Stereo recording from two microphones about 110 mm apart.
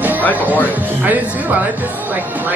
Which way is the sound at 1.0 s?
15° right (ahead or behind).